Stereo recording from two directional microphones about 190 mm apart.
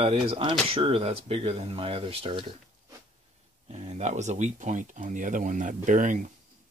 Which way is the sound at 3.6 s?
35° right (ahead or behind).